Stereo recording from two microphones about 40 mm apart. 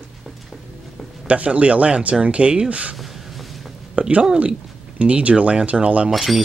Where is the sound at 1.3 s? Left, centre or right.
Right.